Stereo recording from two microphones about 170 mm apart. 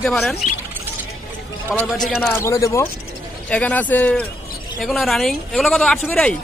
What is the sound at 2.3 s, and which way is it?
Speech, 15° left (ahead or behind).